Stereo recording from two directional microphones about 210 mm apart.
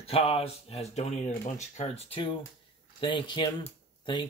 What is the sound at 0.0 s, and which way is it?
Speech, 30° left (ahead or behind).